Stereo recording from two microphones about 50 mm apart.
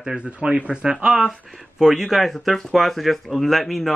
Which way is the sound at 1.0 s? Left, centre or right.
Centre.